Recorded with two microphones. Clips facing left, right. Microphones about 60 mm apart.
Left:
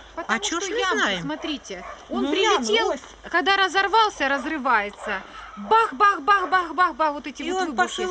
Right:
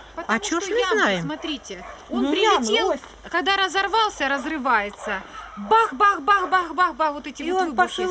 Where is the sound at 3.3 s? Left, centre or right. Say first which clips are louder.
Left 1 dB; left.